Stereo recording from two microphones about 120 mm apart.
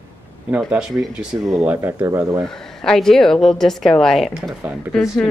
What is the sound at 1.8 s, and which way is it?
Speech, 20° right (ahead or behind).